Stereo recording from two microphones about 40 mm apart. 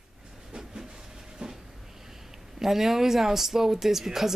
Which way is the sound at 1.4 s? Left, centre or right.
Right.